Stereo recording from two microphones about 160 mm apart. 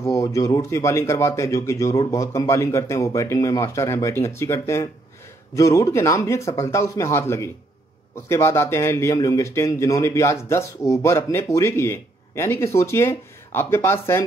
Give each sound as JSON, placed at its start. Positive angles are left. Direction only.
{"t": 0.0, "sound": "a man's voice", "side_deg": 20}